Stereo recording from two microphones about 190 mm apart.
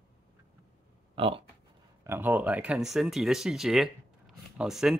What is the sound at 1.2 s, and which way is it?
Speech, 30° right (ahead or behind).